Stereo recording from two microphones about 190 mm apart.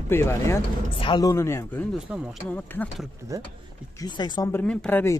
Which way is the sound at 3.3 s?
15° right (ahead or behind).